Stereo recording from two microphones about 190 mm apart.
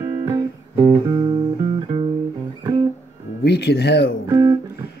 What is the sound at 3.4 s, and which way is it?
Speech, 60° left (ahead or behind).